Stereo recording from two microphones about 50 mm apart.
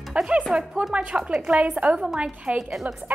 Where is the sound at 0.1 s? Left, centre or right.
Right.